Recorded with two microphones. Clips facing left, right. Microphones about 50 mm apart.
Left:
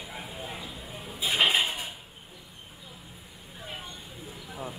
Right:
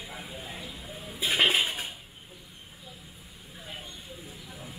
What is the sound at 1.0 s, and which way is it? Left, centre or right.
Dishes, left.